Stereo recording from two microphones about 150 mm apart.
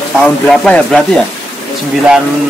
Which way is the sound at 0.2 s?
5° left (ahead or behind).